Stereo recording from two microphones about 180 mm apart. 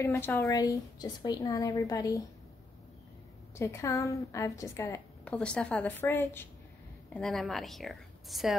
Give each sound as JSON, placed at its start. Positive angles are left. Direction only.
{"t": 0.0, "sound": "a woman's voice", "side_deg": 15}
{"t": 3.5, "sound": "a woman's voice", "side_deg": 15}
{"t": 7.2, "sound": "a woman's voice", "side_deg": 0}